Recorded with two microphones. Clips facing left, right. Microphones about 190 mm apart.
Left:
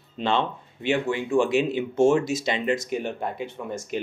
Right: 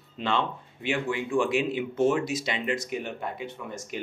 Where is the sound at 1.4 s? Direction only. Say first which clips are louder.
Left 4 dB; 25° left (ahead or behind).